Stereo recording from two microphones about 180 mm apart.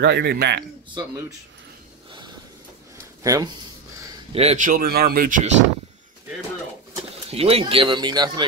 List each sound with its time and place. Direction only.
0.0 s a man's voice: 65° right (ahead or behind)
3.3 s speech: 20° right (ahead or behind)
4.3 s a man's voice: 35° right (ahead or behind)
4.6 s speech: 55° right (ahead or behind)
7.2 s speech: 35° right (ahead or behind)